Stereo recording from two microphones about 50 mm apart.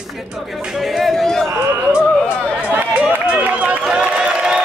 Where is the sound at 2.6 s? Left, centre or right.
Right.